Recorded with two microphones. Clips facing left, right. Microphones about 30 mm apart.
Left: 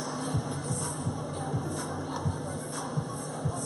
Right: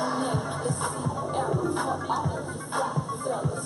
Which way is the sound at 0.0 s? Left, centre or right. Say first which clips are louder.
Right 6 dB; right.